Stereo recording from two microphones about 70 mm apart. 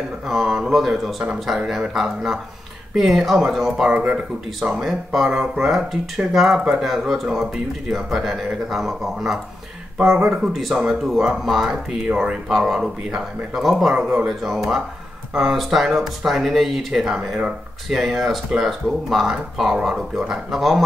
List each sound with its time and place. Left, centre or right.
0.3 s speech: centre
1.2 s speech: centre
3.9 s speech: right
4.6 s speech: centre
12.1 s speech: centre
13.9 s speech: centre
14.2 s speech: centre